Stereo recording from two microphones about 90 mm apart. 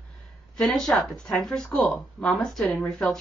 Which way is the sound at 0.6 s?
5° left (ahead or behind).